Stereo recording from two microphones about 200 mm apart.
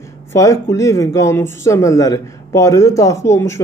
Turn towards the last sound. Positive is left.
turn(degrees=15)  # may be behind; listen again after turning